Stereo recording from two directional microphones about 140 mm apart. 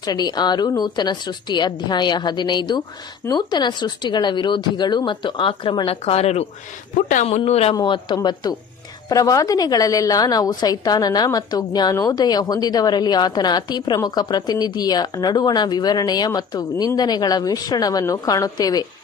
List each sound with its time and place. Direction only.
0.0 s speech: 30° left (ahead or behind); by 7.7 s 50° left (ahead or behind)
7.7 s a woman's voice: 35° left (ahead or behind)